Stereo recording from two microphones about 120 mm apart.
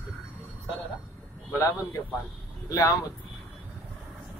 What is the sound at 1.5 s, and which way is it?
Speech, 20° left (ahead or behind).